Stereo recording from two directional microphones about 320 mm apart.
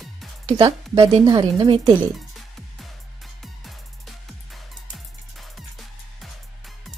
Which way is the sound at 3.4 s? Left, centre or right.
Centre.